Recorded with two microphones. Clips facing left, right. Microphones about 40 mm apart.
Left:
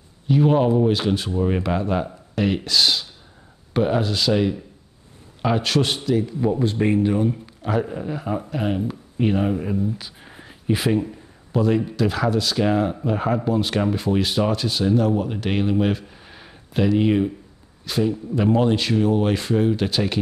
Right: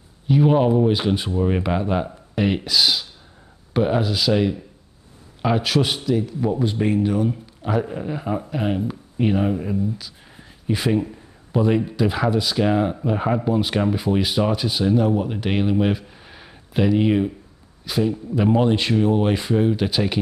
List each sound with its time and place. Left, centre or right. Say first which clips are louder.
0.3 s speech: right 1 dB; centre
1.3 s speech: right 1 dB; centre
7.0 s speech: left 1 dB; centre
10.0 s a sound: left 2 dB; centre
11.6 s speech: right 1 dB; centre
18.8 s speech: right 1 dB; centre